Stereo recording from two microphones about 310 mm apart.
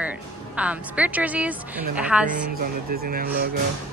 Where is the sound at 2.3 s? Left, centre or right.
Right.